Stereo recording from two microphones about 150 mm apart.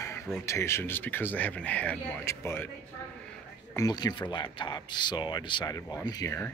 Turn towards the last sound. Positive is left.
turn(degrees=20)  # may be behind; listen again after turning